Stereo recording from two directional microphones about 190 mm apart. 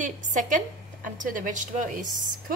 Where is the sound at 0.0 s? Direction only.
40° right (ahead or behind).